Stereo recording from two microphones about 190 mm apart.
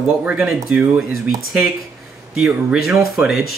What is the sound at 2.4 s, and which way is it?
Speech, 5° right (ahead or behind).